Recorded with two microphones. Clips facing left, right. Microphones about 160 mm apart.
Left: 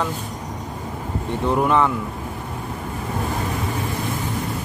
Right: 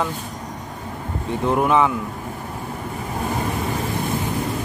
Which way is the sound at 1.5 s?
5° right (ahead or behind).